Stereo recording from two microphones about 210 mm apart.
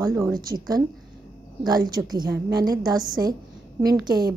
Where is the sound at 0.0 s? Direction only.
15° right (ahead or behind).